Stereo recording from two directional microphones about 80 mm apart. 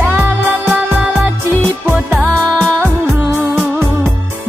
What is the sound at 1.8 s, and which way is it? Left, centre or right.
Music, right.